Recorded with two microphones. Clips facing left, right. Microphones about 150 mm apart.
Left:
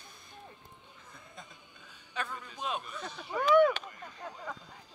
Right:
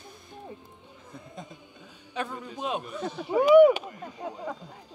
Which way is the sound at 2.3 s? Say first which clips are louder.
Right 5 dB; 15° right (ahead or behind).